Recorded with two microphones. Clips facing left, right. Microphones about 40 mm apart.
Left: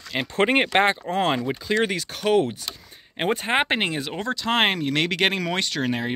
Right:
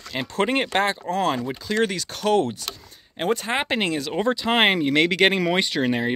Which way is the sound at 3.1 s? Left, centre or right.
Left.